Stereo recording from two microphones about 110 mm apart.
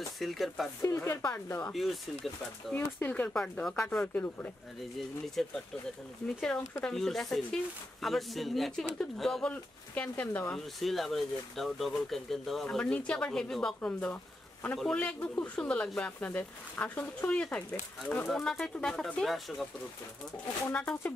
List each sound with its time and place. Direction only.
0.2 s speech: centre (ahead or behind)
0.8 s speech: 25° left (ahead or behind)
1.7 s speech: centre (ahead or behind)
2.7 s speech: 15° left (ahead or behind)
5.4 s speech: 5° left (ahead or behind)
6.8 s speech: 5° left (ahead or behind)
10.8 s speech: centre (ahead or behind)
20.7 s speech: 10° left (ahead or behind)